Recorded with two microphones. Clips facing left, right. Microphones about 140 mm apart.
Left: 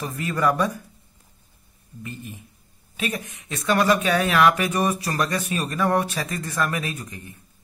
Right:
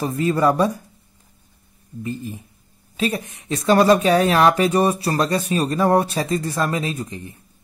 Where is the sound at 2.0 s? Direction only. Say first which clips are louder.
Right 8 dB; 35° right (ahead or behind).